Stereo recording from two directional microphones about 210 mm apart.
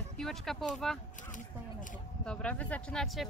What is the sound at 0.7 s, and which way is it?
Speech, centre (ahead or behind).